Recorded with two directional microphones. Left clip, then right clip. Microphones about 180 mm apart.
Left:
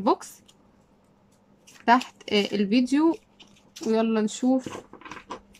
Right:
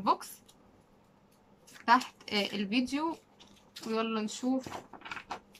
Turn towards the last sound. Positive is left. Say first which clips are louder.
# left 2 dB
turn(degrees=40)  # may be behind; listen again after turning